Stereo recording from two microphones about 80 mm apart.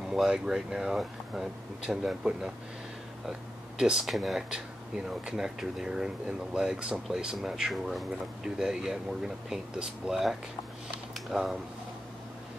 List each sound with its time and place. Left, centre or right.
0.1 s speech: centre